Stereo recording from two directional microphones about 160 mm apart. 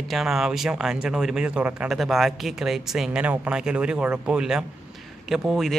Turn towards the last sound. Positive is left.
turn(degrees=0)  # may be behind; listen again after turning